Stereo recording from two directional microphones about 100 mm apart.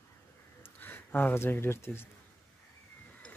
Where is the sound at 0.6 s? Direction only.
20° left (ahead or behind).